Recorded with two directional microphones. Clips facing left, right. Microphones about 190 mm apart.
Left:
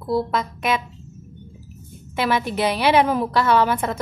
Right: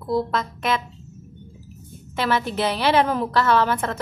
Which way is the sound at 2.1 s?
10° left (ahead or behind).